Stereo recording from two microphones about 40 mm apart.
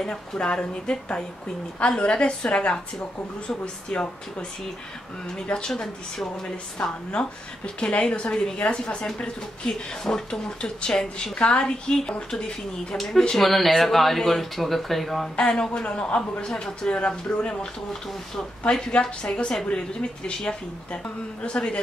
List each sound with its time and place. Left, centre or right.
0.0 s speech: centre
0.5 s a woman's voice: left
5.5 s a woman's voice: left
6.8 s a woman's voice: left
12.9 s speech: centre
15.3 s a woman's voice: left
16.4 s speech: centre
16.9 s a woman's voice: left
18.6 s a woman's voice: left